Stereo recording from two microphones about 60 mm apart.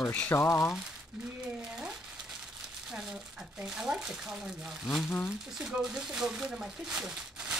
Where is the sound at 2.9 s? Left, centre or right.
Centre.